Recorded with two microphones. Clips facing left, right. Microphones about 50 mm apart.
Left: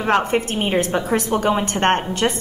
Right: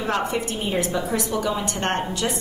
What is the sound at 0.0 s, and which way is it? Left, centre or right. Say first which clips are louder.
A woman's voice: left 6 dB; left.